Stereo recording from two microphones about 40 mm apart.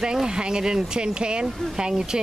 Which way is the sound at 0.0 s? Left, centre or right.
Centre.